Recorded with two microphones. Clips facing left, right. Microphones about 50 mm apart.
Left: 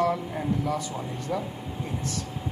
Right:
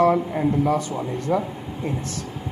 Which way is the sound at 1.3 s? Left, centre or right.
Right.